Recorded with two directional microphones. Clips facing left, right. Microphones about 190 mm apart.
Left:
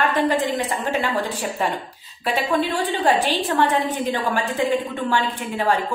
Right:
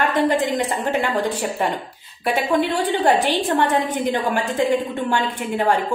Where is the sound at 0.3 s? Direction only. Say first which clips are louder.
Right 2 dB; 20° right (ahead or behind).